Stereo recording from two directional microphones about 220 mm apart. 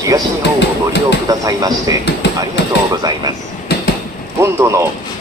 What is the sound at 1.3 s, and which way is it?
Speech, 15° right (ahead or behind).